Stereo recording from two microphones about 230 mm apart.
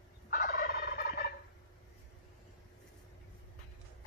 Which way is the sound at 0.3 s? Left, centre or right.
Left.